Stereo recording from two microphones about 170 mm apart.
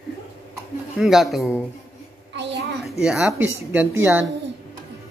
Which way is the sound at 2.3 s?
90° right.